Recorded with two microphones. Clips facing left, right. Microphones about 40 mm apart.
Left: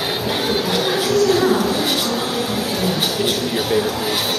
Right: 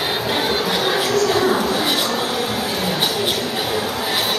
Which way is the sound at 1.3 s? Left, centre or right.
Centre.